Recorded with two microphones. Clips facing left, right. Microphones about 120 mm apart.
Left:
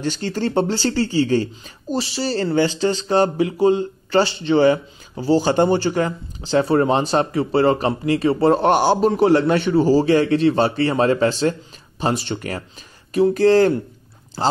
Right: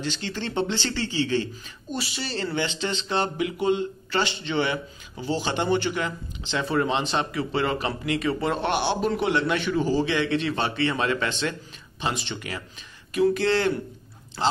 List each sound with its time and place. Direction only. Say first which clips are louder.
0.0 s speech: left 8 dB; 45° left (ahead or behind)